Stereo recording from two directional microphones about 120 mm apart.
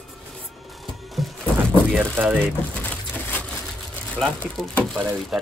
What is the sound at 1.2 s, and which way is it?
Music, centre (ahead or behind).